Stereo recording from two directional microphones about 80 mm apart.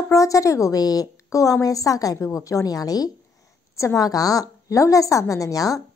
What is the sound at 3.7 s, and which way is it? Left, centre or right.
A woman's voice, left.